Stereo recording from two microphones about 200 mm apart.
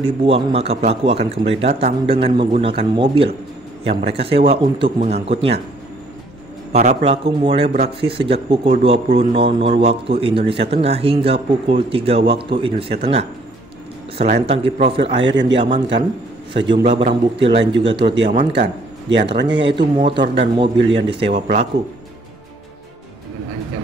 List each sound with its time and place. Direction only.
0.0 s a man's voice: 30° right (ahead or behind)
6.7 s a man's voice: 35° right (ahead or behind)
15.2 s a man's voice: 65° right (ahead or behind)
15.5 s a man's voice: 25° right (ahead or behind)
19.1 s a man's voice: 25° right (ahead or behind)